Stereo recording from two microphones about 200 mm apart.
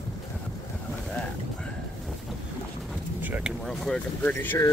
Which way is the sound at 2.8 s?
5° right (ahead or behind).